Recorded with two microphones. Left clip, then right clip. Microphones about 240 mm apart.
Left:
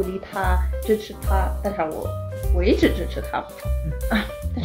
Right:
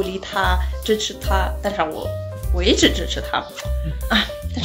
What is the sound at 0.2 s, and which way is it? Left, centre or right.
Speech, centre.